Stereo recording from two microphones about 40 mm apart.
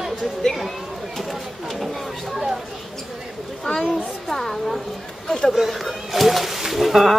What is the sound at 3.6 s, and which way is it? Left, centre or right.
A child's voice, centre.